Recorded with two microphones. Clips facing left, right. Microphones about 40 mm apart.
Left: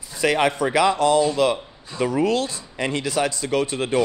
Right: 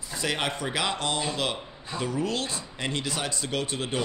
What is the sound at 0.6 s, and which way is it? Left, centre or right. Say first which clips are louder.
Speech: left 9 dB; left.